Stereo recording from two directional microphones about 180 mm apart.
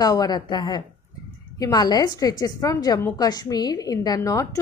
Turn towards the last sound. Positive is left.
turn(degrees=15)  # may be behind; listen again after turning